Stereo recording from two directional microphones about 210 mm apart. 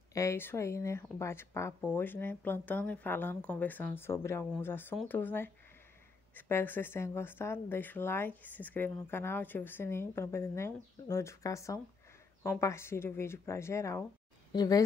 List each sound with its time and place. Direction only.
0.1 s a woman's voice: 15° left (ahead or behind)